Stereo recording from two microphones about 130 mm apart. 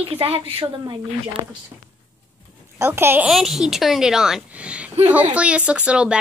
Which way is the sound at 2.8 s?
20° right (ahead or behind).